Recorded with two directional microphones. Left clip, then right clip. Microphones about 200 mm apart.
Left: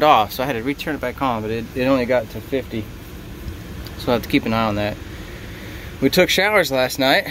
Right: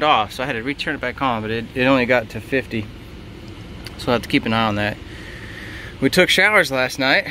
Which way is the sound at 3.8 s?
Centre (ahead or behind).